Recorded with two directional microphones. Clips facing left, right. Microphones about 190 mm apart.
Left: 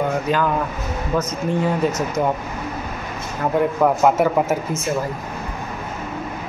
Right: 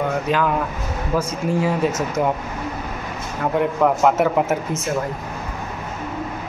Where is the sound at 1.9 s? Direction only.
25° right (ahead or behind).